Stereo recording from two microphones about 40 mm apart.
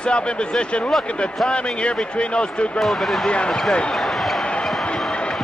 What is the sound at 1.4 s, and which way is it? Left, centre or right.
Speech, left.